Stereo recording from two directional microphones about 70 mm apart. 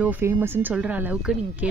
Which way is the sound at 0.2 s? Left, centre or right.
Right.